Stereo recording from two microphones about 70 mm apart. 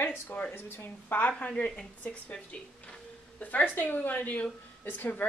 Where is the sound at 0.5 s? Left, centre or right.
Left.